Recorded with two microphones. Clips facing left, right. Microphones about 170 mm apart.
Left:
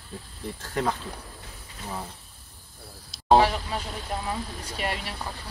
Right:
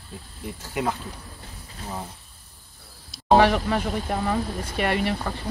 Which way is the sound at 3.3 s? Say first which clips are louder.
Right 5 dB; 65° right (ahead or behind).